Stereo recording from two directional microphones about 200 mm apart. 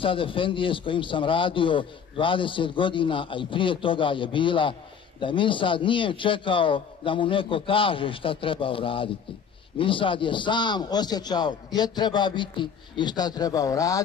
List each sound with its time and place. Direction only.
0.0 s a man's voice: 25° left (ahead or behind)